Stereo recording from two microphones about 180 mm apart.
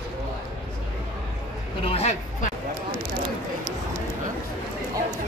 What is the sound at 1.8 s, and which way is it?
Speech, 35° left (ahead or behind).